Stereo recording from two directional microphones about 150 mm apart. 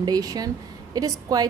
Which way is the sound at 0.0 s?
25° right (ahead or behind).